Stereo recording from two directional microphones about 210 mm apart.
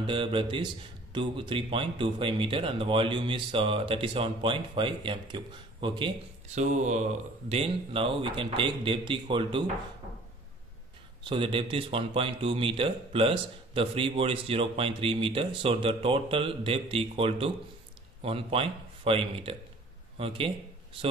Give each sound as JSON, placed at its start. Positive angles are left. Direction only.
{"t": 0.0, "sound": "speech", "side_deg": -25}
{"t": 6.6, "sound": "speech", "side_deg": -35}
{"t": 11.2, "sound": "speech", "side_deg": -25}